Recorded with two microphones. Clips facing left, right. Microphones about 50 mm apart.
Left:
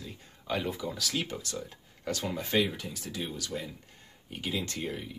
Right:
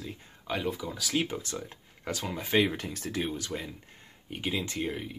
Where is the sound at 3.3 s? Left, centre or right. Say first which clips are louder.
Right 2 dB; right.